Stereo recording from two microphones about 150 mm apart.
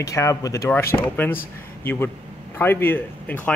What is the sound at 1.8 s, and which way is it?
A man's voice, 15° left (ahead or behind).